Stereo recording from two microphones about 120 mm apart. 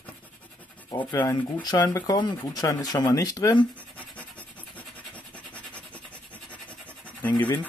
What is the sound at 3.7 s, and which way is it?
Scratch, 10° left (ahead or behind).